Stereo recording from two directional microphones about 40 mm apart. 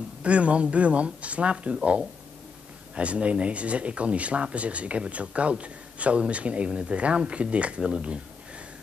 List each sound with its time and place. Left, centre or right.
0.2 s speech: right
2.9 s speech: right